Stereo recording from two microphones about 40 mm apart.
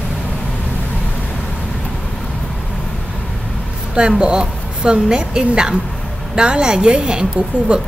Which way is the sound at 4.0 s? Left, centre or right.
Right.